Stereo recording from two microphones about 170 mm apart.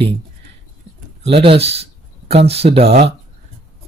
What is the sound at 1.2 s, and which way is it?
Speech, 35° right (ahead or behind).